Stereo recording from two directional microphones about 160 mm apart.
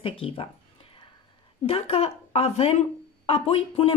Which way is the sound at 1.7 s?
35° left (ahead or behind).